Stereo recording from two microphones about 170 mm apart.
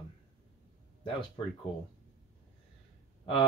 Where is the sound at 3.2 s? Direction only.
30° left (ahead or behind).